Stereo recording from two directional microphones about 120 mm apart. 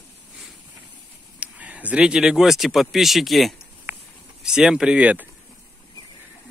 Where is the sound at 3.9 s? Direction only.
20° right (ahead or behind).